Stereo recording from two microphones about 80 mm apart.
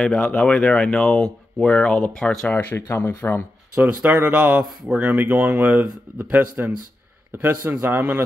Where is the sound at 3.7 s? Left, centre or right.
Centre.